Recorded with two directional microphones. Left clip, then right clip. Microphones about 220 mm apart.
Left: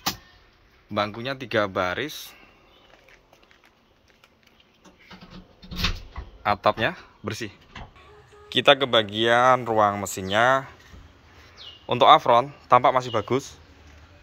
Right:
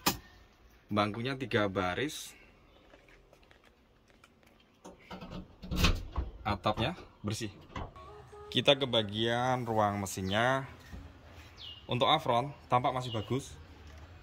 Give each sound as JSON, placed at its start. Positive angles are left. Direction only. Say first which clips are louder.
{"t": 0.9, "sound": "speech", "louder": "left 5 dB", "side_deg": -10}
{"t": 5.7, "sound": "a sound", "louder": "left 4 dB", "side_deg": -50}
{"t": 6.4, "sound": "a man's voice", "louder": "left 11 dB", "side_deg": -5}
{"t": 11.8, "sound": "a man's voice", "louder": "left 13 dB", "side_deg": -5}